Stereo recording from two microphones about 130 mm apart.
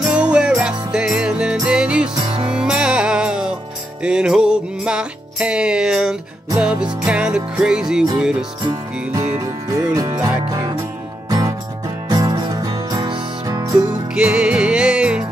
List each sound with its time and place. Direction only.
0.0 s music: 10° right (ahead or behind)
2.2 s music: 40° right (ahead or behind)
2.5 s music: 5° right (ahead or behind)
9.4 s music: 25° right (ahead or behind)
14.1 s music: 5° right (ahead or behind)